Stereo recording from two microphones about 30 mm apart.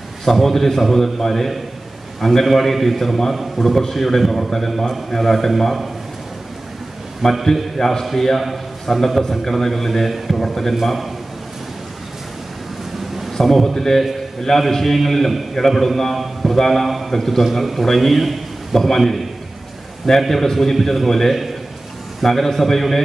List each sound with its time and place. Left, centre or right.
0.2 s a man's voice: centre
7.2 s a man's voice: centre
7.5 s a man's voice: centre
10.7 s a man's voice: centre
13.3 s a man's voice: centre